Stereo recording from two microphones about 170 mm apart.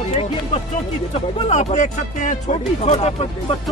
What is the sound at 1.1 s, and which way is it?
Speech, 40° left (ahead or behind).